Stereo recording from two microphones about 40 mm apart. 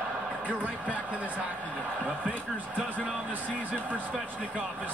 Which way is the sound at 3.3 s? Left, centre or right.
Right.